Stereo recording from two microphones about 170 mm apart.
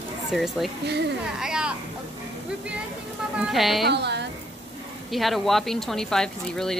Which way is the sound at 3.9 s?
80° right.